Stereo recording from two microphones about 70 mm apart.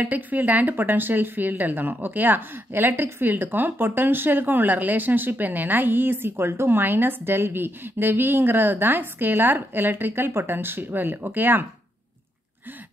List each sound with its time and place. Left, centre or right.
0.0 s speech: right